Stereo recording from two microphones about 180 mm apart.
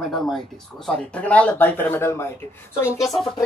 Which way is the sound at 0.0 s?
Centre (ahead or behind).